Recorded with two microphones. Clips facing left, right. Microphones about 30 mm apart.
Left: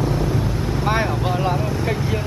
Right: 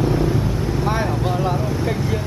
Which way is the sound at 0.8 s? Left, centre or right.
Left.